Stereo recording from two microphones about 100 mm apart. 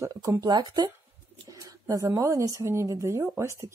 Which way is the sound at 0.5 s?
45° right (ahead or behind).